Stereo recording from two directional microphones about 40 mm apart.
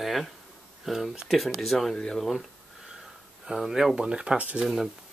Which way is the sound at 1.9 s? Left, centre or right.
Left.